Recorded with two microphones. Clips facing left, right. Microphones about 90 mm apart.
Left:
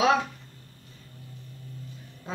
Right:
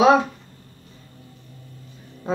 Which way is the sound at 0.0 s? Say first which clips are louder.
Right 7 dB; 25° right (ahead or behind).